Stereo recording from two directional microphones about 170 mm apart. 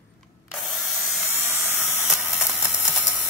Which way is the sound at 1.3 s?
10° right (ahead or behind).